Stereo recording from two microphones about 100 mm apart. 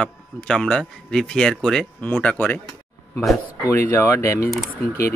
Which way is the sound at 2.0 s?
15° left (ahead or behind).